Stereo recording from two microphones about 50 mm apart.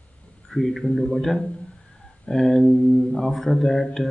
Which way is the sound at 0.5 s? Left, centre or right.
Centre.